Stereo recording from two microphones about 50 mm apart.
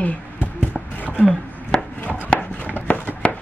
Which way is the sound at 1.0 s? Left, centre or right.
Left.